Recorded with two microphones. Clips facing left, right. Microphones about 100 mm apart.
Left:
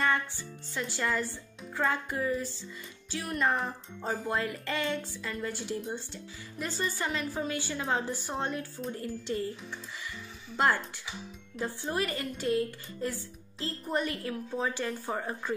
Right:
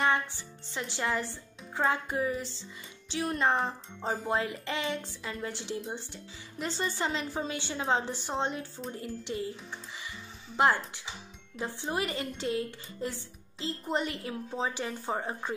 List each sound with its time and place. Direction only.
0.0 s speech: 20° right (ahead or behind)
10.0 s music: 20° right (ahead or behind)
11.6 s speech: 20° right (ahead or behind)